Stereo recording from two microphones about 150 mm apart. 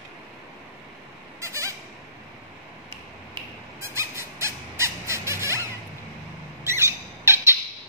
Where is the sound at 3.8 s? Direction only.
15° right (ahead or behind).